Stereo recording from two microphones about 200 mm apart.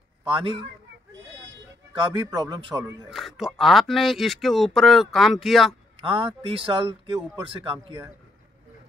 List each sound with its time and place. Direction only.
0.3 s speech: 25° right (ahead or behind)
2.1 s speech: 20° right (ahead or behind)
3.1 s speech: centre (ahead or behind)
6.0 s speech: 25° right (ahead or behind)